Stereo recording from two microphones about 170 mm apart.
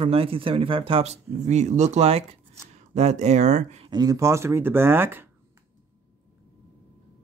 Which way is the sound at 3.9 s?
20° right (ahead or behind).